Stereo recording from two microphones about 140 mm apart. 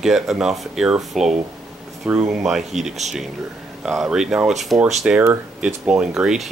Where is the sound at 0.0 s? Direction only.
Centre (ahead or behind).